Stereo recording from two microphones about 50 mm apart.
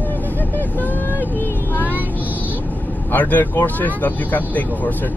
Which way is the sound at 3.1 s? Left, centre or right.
Left.